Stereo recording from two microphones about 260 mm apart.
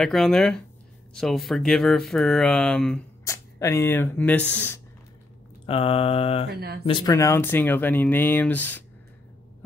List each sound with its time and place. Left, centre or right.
0.0 s speech: centre
5.7 s a sound: left
6.5 s speech: right
6.8 s speech: centre